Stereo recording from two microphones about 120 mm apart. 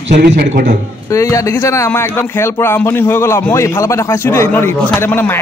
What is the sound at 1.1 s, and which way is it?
A man's voice, 25° left (ahead or behind).